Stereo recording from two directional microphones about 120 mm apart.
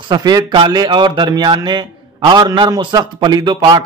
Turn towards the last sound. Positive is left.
turn(degrees=-40)  # may be behind; listen again after turning